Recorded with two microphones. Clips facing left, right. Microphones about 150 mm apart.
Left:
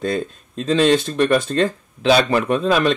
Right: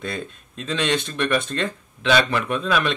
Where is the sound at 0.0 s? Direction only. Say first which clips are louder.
Left 8 dB; 35° left (ahead or behind).